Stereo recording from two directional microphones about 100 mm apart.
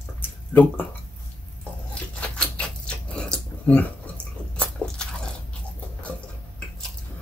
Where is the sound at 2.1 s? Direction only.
10° left (ahead or behind).